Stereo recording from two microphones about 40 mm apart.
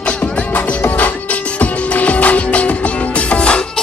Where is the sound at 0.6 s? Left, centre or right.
Left.